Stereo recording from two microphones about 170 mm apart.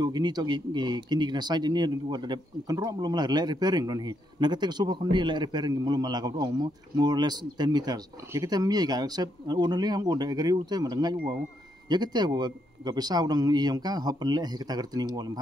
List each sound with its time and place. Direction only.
0.0 s a man's voice: 25° right (ahead or behind)